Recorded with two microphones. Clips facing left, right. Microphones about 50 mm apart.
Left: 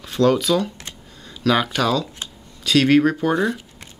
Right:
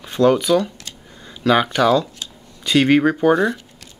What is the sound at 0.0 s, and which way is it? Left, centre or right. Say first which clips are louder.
Speech: right 2 dB; centre.